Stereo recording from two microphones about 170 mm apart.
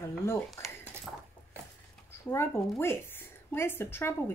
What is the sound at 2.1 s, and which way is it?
A woman's voice, 15° left (ahead or behind).